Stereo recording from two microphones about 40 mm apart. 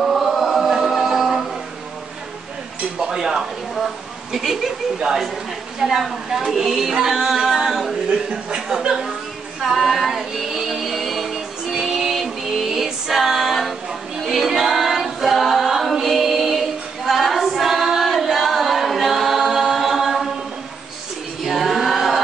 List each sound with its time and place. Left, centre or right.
0.0 s chant: centre
3.0 s a sound: centre
4.3 s speech: centre
5.8 s speech: centre
9.6 s female singing: centre
21.5 s chant: centre